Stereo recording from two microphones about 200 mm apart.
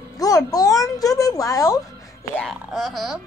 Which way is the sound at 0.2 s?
20° left (ahead or behind).